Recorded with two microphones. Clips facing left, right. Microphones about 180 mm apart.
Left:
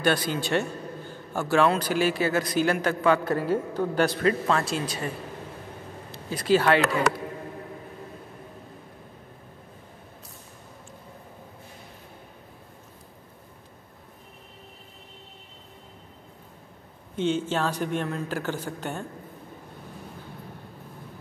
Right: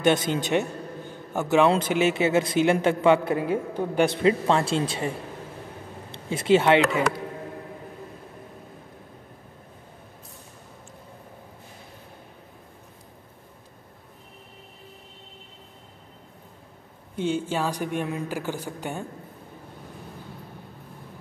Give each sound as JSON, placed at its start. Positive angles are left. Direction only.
{"t": 0.0, "sound": "a man's voice", "side_deg": -20}
{"t": 3.3, "sound": "a man's voice", "side_deg": -15}
{"t": 6.1, "sound": "speech", "side_deg": -25}
{"t": 17.1, "sound": "a man's voice", "side_deg": -10}